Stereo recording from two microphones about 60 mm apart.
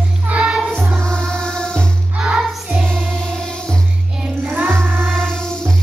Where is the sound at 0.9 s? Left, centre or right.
Centre.